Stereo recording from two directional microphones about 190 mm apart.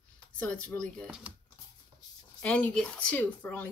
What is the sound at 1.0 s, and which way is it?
Speech, 5° right (ahead or behind).